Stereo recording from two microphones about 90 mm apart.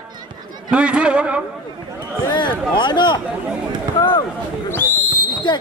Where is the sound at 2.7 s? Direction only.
60° left (ahead or behind).